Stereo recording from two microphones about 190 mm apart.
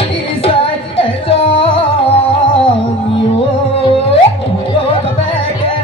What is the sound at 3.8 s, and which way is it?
Music, 30° left (ahead or behind).